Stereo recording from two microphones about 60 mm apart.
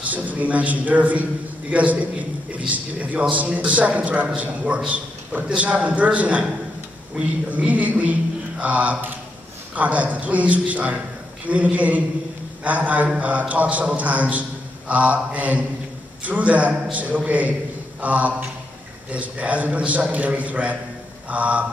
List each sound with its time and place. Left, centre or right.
0.0 s a man's voice: right